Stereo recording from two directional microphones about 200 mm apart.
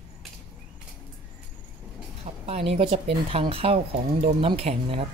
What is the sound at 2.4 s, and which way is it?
Speech, 30° right (ahead or behind).